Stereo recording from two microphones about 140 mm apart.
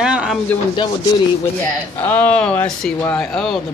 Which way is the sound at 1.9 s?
15° left (ahead or behind).